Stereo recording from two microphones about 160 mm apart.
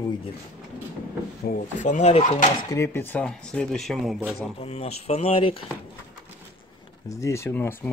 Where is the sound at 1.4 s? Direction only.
55° left (ahead or behind).